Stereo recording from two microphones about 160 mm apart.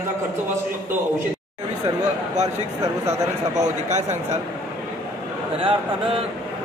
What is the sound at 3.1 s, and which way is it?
Speech, 45° right (ahead or behind).